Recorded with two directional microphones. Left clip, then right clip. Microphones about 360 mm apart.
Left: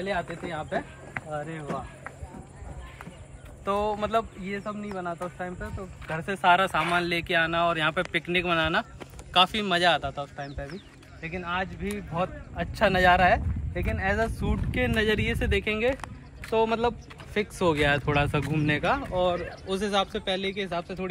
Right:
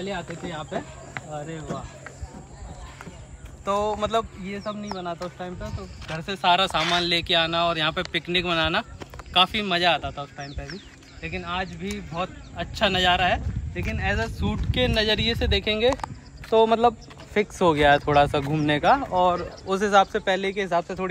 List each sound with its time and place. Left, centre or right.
0.1 s speech: centre
3.6 s speech: centre